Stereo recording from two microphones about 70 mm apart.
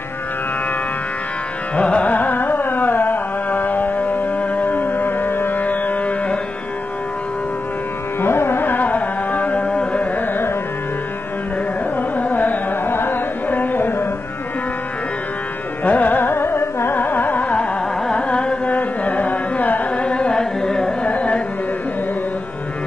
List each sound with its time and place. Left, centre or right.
1.8 s carnatic music: centre
8.2 s carnatic music: left
12.2 s carnatic music: left
15.8 s carnatic music: left